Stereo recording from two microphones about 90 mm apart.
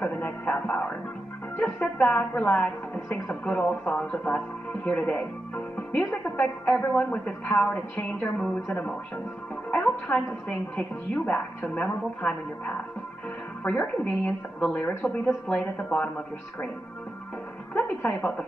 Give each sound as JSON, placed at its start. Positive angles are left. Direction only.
{"t": 0.0, "sound": "music", "side_deg": 15}
{"t": 1.6, "sound": "a woman's voice", "side_deg": 15}
{"t": 5.8, "sound": "music", "side_deg": 20}
{"t": 6.3, "sound": "a woman's voice", "side_deg": 15}
{"t": 15.0, "sound": "speech", "side_deg": 5}
{"t": 17.7, "sound": "speech", "side_deg": 15}